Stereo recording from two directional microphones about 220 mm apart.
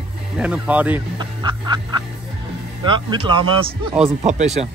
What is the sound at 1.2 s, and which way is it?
Speech, 20° right (ahead or behind).